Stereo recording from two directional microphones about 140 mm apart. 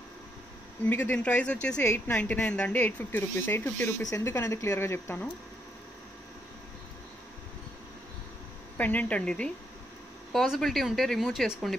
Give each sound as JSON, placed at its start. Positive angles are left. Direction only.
{"t": 0.8, "sound": "speech", "side_deg": 10}
{"t": 8.7, "sound": "speech", "side_deg": 10}